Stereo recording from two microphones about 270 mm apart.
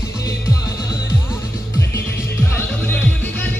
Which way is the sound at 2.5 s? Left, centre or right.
Centre.